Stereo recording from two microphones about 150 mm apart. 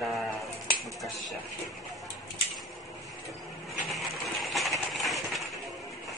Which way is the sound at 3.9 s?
Centre (ahead or behind).